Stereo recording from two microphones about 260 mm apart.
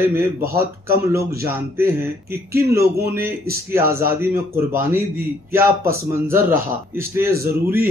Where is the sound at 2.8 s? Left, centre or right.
Right.